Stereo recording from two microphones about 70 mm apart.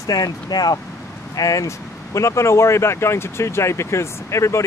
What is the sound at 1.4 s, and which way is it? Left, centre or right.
Speech, left.